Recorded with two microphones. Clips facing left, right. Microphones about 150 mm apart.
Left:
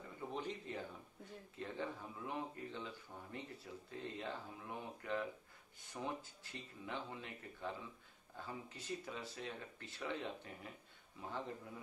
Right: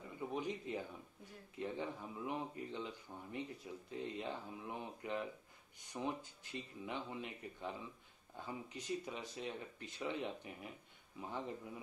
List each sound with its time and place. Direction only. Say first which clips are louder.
0.3 s speech: right 3 dB; 15° right (ahead or behind)